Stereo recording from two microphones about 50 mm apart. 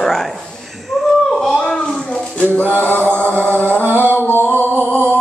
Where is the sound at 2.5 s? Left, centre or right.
Left.